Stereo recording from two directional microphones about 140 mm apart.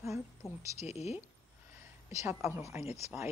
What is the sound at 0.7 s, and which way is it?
Speech, 50° left (ahead or behind).